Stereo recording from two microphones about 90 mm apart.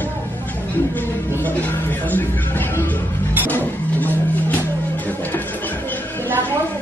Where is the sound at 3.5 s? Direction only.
20° left (ahead or behind).